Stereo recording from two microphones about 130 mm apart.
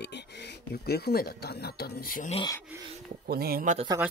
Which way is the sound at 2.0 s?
90° left.